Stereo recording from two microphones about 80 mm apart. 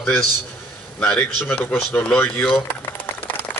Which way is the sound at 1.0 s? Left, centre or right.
Centre.